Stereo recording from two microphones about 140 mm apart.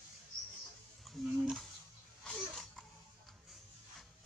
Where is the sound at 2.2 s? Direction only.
5° left (ahead or behind).